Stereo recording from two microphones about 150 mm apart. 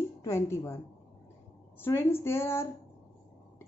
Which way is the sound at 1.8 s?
15° left (ahead or behind).